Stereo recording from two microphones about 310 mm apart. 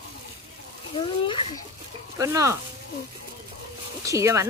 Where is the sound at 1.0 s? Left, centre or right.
Centre.